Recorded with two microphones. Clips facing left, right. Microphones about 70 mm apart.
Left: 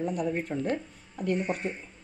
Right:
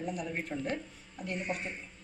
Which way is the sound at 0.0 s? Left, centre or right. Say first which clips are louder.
Left 7 dB; left.